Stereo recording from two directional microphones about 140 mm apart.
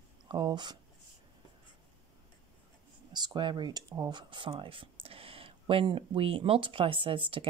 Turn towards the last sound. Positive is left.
turn(degrees=-40)  # may be behind; listen again after turning